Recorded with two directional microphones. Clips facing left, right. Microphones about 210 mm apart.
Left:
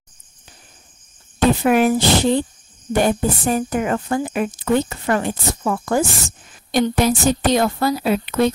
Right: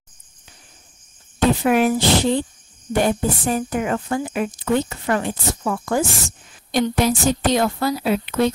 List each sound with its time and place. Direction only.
1.6 s speech: 50° left (ahead or behind)